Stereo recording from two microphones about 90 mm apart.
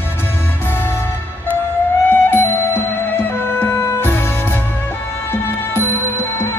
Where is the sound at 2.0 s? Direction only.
25° left (ahead or behind).